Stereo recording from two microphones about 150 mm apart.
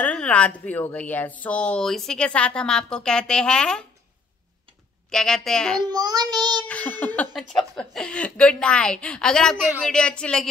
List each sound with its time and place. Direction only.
0.0 s a woman's voice: 10° left (ahead or behind)
5.1 s a woman's voice: 5° left (ahead or behind)
5.9 s a child's voice: 25° right (ahead or behind)
6.7 s a woman's voice: 10° left (ahead or behind)